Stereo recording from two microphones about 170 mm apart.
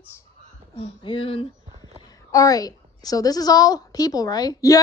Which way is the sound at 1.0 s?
30° left (ahead or behind).